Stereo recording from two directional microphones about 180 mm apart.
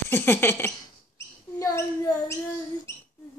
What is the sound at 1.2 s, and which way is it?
Speech, 15° left (ahead or behind).